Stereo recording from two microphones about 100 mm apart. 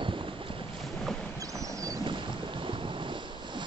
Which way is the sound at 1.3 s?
35° right (ahead or behind).